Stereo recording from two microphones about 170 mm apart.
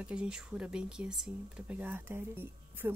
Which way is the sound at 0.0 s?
5° right (ahead or behind).